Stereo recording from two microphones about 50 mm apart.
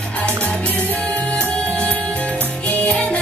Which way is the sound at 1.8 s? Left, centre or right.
Left.